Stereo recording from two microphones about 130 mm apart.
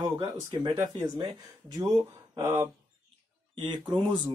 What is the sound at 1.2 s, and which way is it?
Speech, 30° right (ahead or behind).